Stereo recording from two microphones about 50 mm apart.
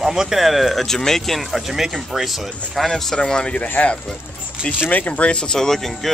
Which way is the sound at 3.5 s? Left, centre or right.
Left.